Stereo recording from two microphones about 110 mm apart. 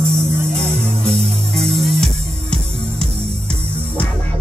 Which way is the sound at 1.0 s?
5° left (ahead or behind).